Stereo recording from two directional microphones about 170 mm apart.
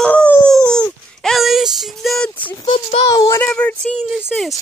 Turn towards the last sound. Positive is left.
turn(degrees=0)  # may be behind; listen again after turning